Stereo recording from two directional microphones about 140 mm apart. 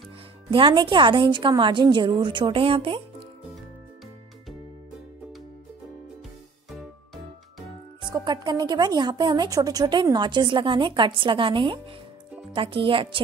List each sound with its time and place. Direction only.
0.5 s a woman's voice: 35° right (ahead or behind)
8.1 s a woman's voice: 30° right (ahead or behind)